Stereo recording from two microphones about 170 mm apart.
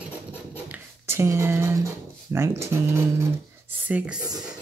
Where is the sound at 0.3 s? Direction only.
10° right (ahead or behind).